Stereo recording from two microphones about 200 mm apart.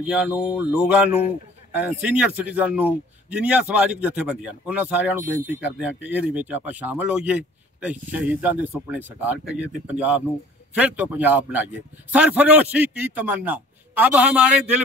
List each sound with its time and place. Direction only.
0.1 s speech: 5° right (ahead or behind)